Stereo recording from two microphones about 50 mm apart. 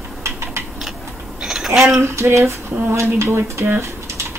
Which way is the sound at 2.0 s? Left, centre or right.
Right.